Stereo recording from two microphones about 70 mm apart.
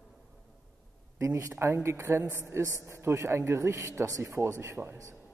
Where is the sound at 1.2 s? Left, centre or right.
Right.